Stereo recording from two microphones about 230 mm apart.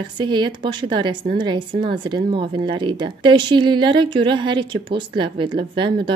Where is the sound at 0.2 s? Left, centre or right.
Centre.